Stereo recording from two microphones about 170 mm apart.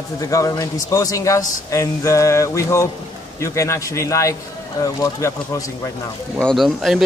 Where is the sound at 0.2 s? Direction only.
20° left (ahead or behind).